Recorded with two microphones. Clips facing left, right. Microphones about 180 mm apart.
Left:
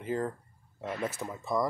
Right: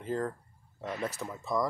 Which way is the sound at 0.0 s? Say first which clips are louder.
Left 1 dB; 10° left (ahead or behind).